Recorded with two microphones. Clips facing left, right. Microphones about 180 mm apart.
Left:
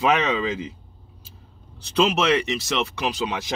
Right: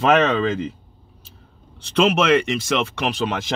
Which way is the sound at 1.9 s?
55° right (ahead or behind).